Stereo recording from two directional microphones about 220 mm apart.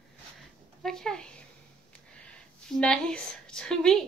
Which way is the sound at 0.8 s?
Centre (ahead or behind).